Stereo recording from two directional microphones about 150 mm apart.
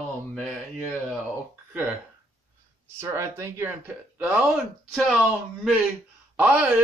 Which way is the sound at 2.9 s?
20° right (ahead or behind).